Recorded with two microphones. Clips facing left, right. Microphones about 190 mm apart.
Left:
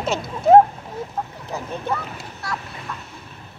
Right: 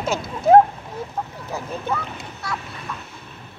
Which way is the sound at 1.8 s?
Centre (ahead or behind).